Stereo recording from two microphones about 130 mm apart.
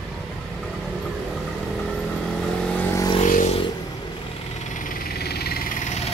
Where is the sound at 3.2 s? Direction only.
75° left (ahead or behind).